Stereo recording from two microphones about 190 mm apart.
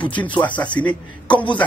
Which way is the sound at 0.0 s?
5° left (ahead or behind).